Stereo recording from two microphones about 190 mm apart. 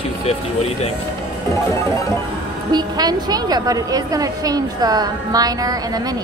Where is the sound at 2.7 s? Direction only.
20° right (ahead or behind).